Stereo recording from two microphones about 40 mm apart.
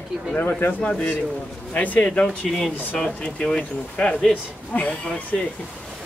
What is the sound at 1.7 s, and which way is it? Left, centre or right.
Speech, left.